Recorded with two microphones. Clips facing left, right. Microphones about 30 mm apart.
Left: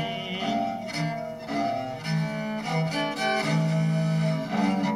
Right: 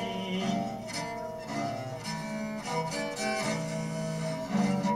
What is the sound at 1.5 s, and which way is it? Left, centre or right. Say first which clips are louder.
Cello: left 8 dB; left.